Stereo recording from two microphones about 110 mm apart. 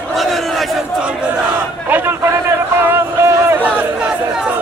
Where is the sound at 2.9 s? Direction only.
20° right (ahead or behind).